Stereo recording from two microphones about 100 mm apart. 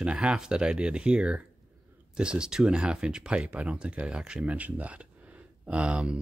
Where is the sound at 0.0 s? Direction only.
10° right (ahead or behind).